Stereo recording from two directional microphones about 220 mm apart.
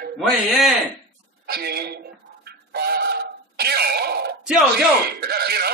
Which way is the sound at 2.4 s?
45° right (ahead or behind).